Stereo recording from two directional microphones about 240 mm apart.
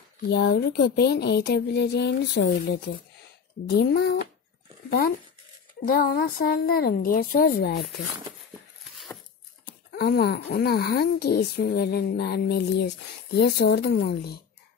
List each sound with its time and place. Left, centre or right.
0.3 s speech: left
5.9 s speech: left
8.9 s a sound: centre
9.9 s speech: left